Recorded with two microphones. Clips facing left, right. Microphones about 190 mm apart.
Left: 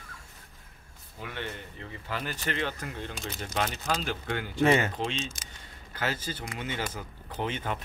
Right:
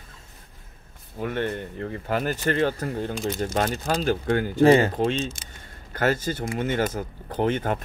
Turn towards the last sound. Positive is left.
turn(degrees=-45)  # may be behind; listen again after turning